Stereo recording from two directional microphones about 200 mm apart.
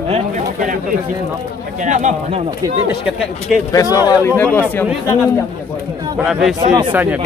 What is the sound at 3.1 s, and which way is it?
Speech, centre (ahead or behind).